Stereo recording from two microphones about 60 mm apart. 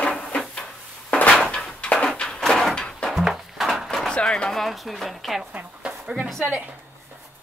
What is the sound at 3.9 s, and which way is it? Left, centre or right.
Bird, centre.